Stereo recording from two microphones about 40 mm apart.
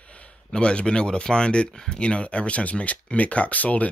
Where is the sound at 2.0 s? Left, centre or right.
Left.